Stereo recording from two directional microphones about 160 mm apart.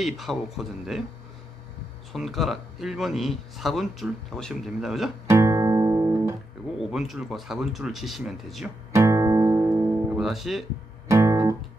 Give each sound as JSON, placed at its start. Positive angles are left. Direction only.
{"t": 0.0, "sound": "speech", "side_deg": 0}
{"t": 2.1, "sound": "speech", "side_deg": 0}
{"t": 5.3, "sound": "music", "side_deg": -20}
{"t": 6.8, "sound": "speech", "side_deg": 0}
{"t": 8.9, "sound": "music", "side_deg": -20}
{"t": 10.1, "sound": "speech", "side_deg": 0}
{"t": 11.1, "sound": "guitar", "side_deg": -20}